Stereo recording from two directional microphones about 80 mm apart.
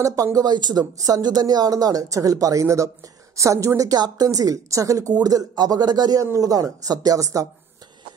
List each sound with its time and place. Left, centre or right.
0.0 s speech: right
0.9 s a woman's voice: right
3.9 s a woman's voice: right
6.3 s a woman's voice: right